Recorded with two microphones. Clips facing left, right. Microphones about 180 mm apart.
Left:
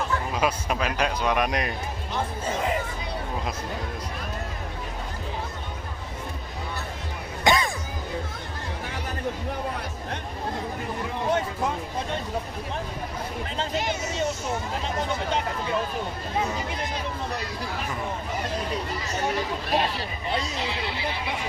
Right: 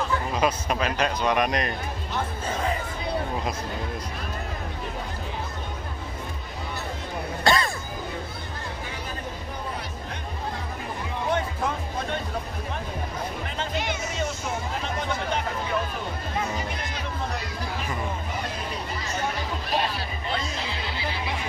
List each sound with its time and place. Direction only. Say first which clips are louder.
0.3 s a man's voice: right 2 dB; 5° left (ahead or behind)
7.4 s music: left 1 dB; 15° left (ahead or behind)
13.6 s music: left 2 dB; 40° left (ahead or behind)